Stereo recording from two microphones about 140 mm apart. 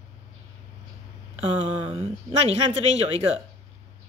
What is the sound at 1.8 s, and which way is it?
Speech, 45° right (ahead or behind).